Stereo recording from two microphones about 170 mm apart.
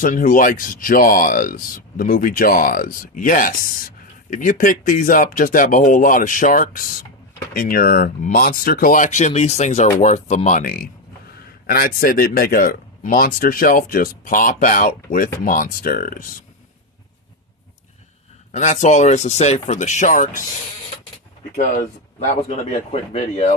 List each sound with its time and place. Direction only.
0.0 s speech: 50° left (ahead or behind)
18.5 s speech: 45° left (ahead or behind)
22.3 s speech: 45° left (ahead or behind)